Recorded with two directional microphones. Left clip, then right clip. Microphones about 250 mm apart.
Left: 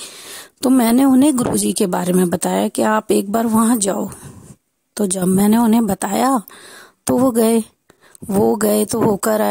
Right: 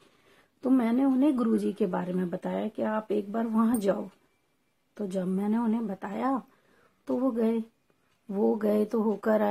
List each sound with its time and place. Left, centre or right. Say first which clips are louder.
0.6 s speech: left 12 dB; left